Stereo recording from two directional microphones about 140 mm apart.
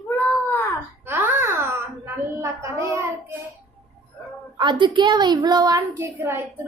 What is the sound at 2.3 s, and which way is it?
Speech, 20° right (ahead or behind).